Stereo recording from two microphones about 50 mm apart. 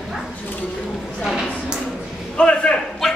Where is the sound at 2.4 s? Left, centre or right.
Left.